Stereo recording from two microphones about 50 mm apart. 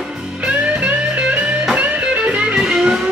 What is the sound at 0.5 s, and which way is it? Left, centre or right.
Music, right.